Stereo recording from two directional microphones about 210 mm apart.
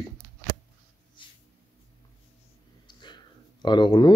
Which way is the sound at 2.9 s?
20° left (ahead or behind).